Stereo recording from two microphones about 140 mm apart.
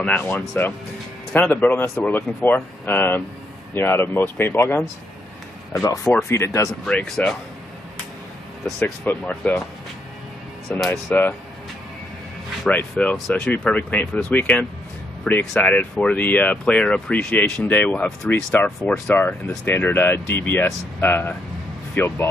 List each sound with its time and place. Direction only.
0.0 s speech: 10° left (ahead or behind)
6.8 s speech: 5° left (ahead or behind)
8.6 s speech: 5° left (ahead or behind)
10.9 s speech: 15° left (ahead or behind)
12.6 s speech: 5° left (ahead or behind)